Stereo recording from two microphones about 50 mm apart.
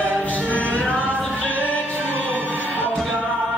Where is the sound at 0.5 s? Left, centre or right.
Left.